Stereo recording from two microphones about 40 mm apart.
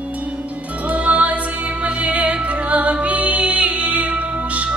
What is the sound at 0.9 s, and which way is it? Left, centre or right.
Music, right.